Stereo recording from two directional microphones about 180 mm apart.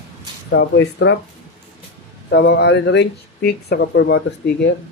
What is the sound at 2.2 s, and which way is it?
Speech, 70° left (ahead or behind).